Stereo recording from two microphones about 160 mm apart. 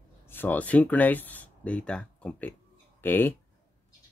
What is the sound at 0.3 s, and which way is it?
Speech, 10° left (ahead or behind).